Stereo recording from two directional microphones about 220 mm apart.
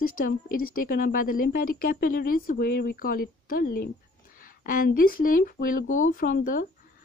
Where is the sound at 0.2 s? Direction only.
40° left (ahead or behind).